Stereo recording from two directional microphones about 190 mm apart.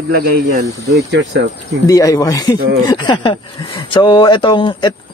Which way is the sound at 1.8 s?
20° left (ahead or behind).